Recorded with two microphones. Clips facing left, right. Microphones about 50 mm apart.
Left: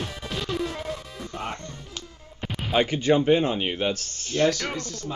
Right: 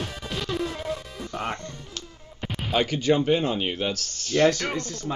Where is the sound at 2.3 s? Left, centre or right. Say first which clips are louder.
Even; centre.